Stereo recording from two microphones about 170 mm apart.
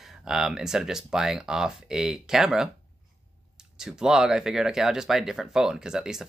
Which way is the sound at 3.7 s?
5° right (ahead or behind).